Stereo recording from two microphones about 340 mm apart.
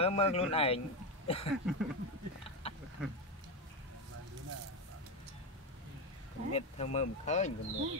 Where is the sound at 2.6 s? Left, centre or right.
Centre.